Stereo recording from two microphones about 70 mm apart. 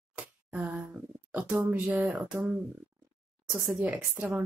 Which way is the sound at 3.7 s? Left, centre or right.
Centre.